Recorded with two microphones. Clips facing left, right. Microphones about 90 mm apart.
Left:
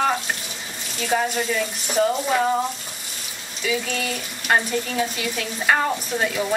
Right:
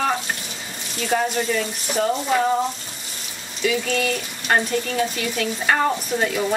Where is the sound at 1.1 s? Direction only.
5° left (ahead or behind).